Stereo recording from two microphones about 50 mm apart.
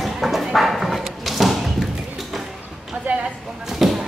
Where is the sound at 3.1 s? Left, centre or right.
Right.